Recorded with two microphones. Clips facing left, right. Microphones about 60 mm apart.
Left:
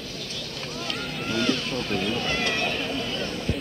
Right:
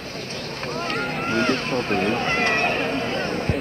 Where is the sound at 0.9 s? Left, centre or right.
Right.